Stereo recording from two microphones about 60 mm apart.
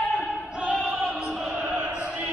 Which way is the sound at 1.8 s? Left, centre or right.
Centre.